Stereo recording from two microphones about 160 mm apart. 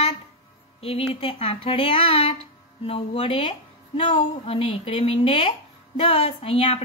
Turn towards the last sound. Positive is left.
turn(degrees=35)  # may be behind; listen again after turning